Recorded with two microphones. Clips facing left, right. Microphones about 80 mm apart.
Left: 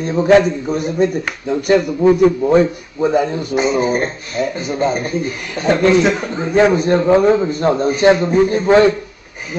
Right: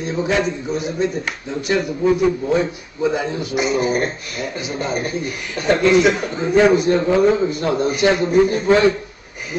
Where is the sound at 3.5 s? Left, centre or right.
Left.